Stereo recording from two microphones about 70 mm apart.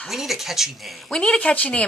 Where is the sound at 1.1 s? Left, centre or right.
Centre.